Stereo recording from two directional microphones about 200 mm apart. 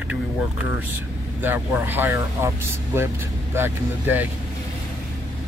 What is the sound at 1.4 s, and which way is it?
Speech, 10° right (ahead or behind).